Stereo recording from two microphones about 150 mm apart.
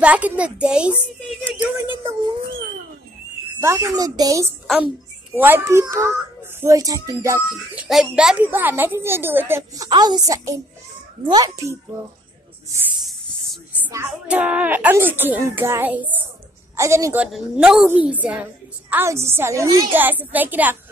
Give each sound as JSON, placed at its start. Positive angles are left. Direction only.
{"t": 0.0, "sound": "a child's voice", "side_deg": -10}
{"t": 3.6, "sound": "a woman's voice", "side_deg": -20}
{"t": 7.9, "sound": "a woman's voice", "side_deg": -5}
{"t": 14.2, "sound": "a woman's voice", "side_deg": -10}
{"t": 17.2, "sound": "a woman's voice", "side_deg": -5}